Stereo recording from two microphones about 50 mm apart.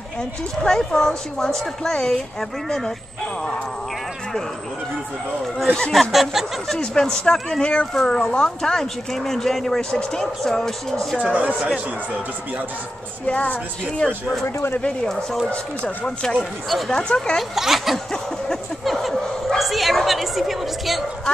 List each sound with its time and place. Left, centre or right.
0.7 s speech: centre
5.8 s speech: centre
7.9 s speech: centre
8.2 s speech: left
11.2 s speech: right
13.3 s speech: left
15.5 s speech: left
16.3 s speech: centre
16.9 s speech: centre
17.4 s speech: centre
18.9 s dog: centre